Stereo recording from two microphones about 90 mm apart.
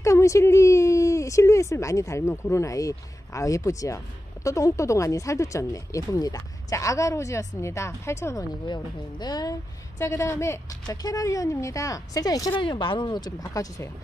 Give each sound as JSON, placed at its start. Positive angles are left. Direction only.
{"t": 0.0, "sound": "a woman's voice", "side_deg": 35}
{"t": 8.6, "sound": "speech", "side_deg": 50}
{"t": 9.9, "sound": "a woman's voice", "side_deg": 30}
{"t": 11.0, "sound": "a woman's voice", "side_deg": 45}
{"t": 12.5, "sound": "speech", "side_deg": 65}